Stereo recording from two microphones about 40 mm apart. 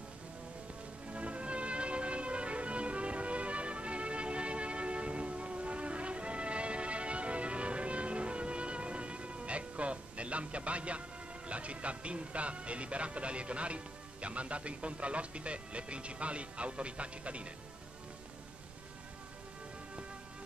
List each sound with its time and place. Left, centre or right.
1.1 s music: right